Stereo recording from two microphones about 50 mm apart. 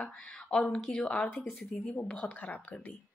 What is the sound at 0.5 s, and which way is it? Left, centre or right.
Speech, centre.